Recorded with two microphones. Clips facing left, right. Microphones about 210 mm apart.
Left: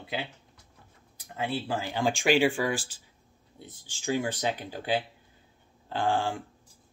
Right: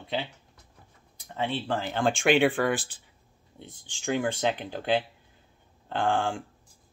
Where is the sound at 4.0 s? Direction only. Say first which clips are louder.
Right 1 dB; 55° right (ahead or behind).